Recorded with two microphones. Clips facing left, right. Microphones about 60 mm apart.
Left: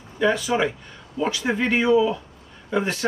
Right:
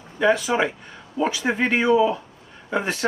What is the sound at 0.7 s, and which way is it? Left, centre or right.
Speech, right.